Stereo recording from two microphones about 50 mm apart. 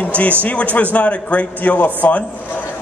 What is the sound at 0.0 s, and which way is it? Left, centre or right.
A man's voice, left.